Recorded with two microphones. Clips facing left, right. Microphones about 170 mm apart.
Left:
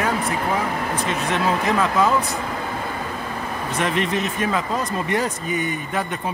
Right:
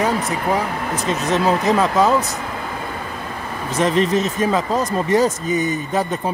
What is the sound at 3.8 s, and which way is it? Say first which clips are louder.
Speech: right 6 dB; 35° right (ahead or behind).